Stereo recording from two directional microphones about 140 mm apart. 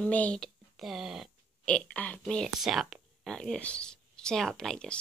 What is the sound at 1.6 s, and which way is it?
A woman's voice, 10° left (ahead or behind).